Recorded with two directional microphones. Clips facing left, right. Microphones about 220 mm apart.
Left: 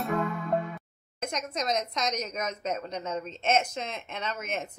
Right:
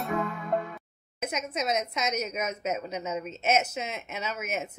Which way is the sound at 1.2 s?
5° right (ahead or behind).